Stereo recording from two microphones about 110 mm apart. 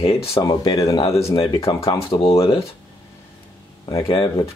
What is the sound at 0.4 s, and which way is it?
Speech, 45° left (ahead or behind).